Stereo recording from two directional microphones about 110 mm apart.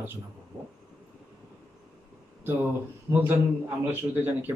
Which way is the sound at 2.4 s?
20° right (ahead or behind).